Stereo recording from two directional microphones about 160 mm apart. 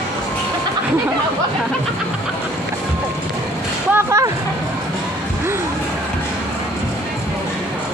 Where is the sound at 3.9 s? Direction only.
20° right (ahead or behind).